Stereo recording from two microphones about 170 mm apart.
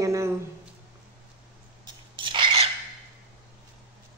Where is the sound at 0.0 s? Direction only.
15° right (ahead or behind).